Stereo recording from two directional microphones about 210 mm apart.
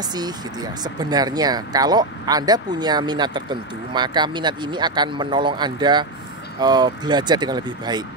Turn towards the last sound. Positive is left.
turn(degrees=-20)  # may be behind; listen again after turning